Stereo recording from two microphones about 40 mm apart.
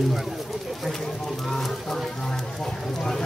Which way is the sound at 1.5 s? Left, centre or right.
Centre.